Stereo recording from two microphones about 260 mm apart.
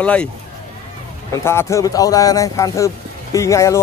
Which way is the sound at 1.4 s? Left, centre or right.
Centre.